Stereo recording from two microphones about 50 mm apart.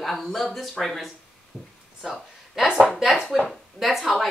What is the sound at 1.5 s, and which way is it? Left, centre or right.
Speech, left.